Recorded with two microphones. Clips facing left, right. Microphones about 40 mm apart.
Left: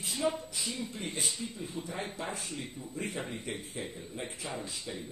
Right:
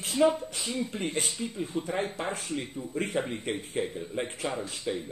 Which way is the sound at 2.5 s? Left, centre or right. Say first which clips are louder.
Right 7 dB; right.